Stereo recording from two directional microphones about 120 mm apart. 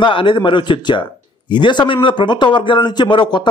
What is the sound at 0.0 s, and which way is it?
A man's voice, 45° left (ahead or behind).